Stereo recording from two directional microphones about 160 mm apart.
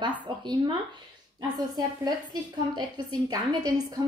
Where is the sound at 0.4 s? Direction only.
30° right (ahead or behind).